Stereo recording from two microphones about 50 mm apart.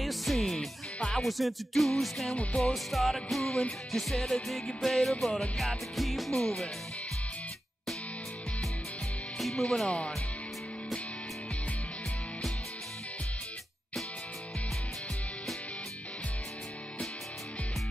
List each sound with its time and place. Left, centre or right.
0.0 s music: centre
9.4 s speech: centre
9.8 s speech: left